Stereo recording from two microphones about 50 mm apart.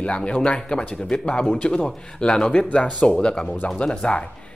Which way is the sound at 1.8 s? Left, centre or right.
Centre.